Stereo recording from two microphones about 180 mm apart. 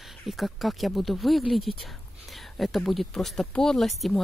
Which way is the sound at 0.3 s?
Centre (ahead or behind).